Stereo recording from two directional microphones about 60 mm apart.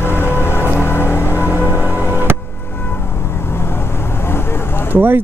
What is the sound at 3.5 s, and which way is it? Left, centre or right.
Vehicle, left.